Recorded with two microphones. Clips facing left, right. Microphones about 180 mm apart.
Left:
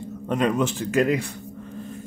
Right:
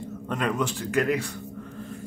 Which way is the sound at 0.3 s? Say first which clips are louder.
Left 5 dB; 20° left (ahead or behind).